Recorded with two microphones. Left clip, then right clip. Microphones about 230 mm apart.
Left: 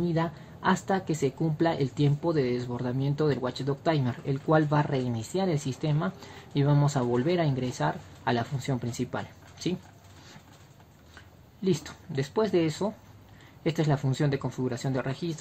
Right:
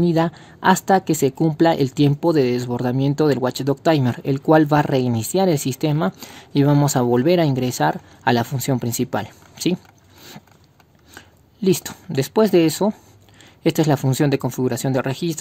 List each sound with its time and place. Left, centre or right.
0.0 s speech: right
11.1 s speech: right